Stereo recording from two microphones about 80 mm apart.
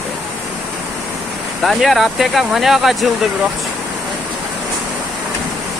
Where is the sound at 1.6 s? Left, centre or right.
Centre.